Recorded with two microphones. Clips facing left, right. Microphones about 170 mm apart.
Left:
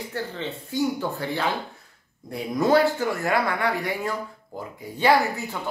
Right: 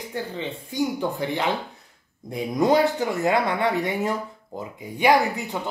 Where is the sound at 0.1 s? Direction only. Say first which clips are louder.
Right 3 dB; 15° right (ahead or behind).